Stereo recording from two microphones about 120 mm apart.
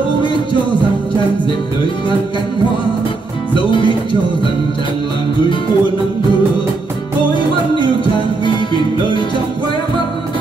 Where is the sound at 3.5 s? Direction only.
45° left (ahead or behind).